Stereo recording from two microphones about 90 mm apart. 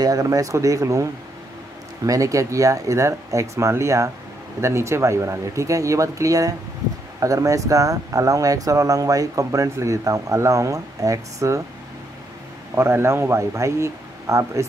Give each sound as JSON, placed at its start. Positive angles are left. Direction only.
{"t": 0.0, "sound": "speech", "side_deg": -40}
{"t": 2.0, "sound": "speech", "side_deg": -35}
{"t": 12.7, "sound": "speech", "side_deg": -30}